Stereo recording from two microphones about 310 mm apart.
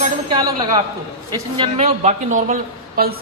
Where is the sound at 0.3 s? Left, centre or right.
Centre.